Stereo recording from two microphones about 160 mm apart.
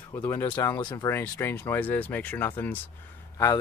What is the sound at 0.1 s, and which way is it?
Speech, 15° left (ahead or behind).